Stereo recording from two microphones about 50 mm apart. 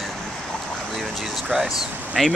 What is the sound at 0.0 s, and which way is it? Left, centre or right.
Vehicle, centre.